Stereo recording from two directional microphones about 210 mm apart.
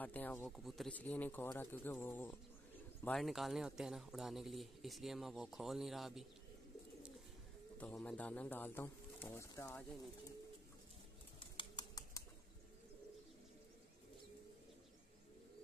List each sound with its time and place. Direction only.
0.0 s speech: 10° left (ahead or behind)
7.7 s speech: 5° left (ahead or behind)
11.3 s bird: 20° left (ahead or behind)